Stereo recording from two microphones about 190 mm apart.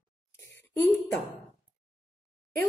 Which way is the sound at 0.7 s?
10° left (ahead or behind).